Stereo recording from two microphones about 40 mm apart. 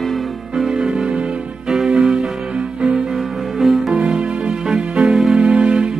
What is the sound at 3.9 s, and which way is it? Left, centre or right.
Music, right.